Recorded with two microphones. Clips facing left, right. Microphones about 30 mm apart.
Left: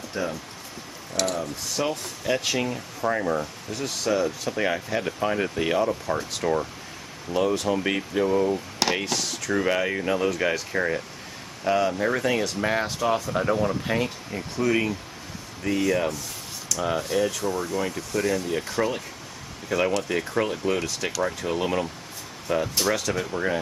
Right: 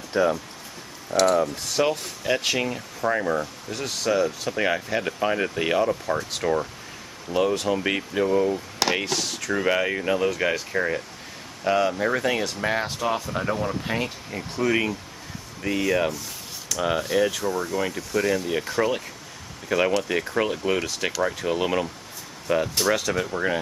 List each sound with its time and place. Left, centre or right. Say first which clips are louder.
0.2 s speech: right 8 dB; right
1.1 s speech: right 7 dB; centre